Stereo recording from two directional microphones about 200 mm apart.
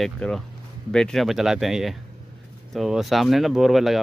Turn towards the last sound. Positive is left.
turn(degrees=0)  # may be behind; listen again after turning